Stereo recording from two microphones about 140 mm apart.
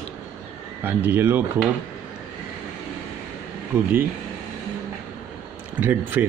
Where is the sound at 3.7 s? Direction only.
15° right (ahead or behind).